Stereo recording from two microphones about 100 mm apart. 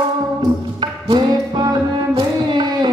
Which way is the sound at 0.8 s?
50° right (ahead or behind).